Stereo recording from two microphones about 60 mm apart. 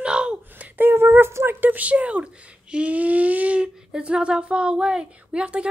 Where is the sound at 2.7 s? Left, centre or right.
Right.